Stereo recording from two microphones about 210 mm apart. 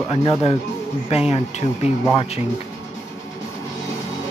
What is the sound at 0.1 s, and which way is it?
Speech, 25° left (ahead or behind).